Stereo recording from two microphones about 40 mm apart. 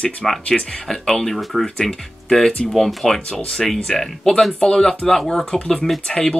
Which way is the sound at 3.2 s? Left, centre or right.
Centre.